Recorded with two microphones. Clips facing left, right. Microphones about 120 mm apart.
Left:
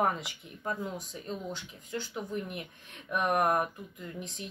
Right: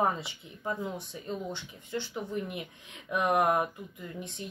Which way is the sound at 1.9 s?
Centre (ahead or behind).